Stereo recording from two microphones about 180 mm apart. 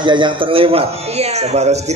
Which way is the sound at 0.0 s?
25° right (ahead or behind).